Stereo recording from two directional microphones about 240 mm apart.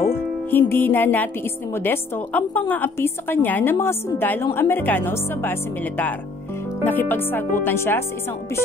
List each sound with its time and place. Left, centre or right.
0.1 s a woman's voice: centre